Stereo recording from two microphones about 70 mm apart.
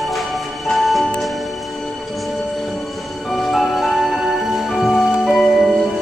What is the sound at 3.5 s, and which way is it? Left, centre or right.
Music, centre.